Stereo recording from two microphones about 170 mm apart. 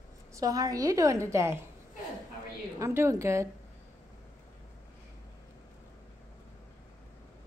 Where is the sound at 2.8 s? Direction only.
15° right (ahead or behind).